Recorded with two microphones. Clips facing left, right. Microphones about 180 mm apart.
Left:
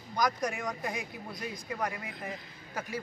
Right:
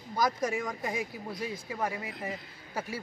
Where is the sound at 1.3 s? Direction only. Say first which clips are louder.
Right 1 dB; 5° right (ahead or behind).